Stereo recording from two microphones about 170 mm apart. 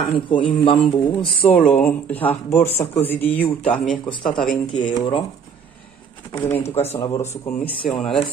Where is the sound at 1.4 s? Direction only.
10° left (ahead or behind).